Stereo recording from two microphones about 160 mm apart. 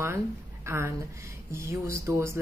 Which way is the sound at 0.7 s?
15° right (ahead or behind).